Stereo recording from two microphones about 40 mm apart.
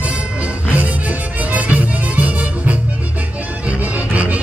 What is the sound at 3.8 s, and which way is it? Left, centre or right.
Music, right.